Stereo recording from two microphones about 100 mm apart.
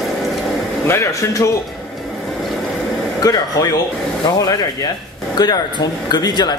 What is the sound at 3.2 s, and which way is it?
Speech, 40° left (ahead or behind).